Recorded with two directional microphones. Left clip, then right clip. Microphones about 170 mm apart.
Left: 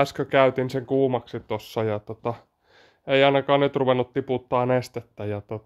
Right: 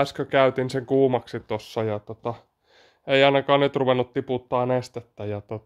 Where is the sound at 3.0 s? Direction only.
5° right (ahead or behind).